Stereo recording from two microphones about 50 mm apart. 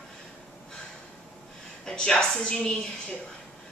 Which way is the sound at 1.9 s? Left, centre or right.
Centre.